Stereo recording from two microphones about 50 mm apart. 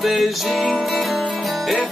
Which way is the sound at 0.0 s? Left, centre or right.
Centre.